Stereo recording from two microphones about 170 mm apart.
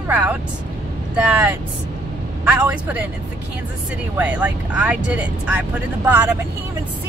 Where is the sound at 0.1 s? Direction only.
10° right (ahead or behind).